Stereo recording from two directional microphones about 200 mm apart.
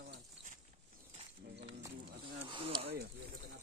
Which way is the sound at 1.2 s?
30° right (ahead or behind).